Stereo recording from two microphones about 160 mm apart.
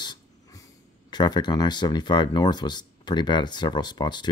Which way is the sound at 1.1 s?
25° left (ahead or behind).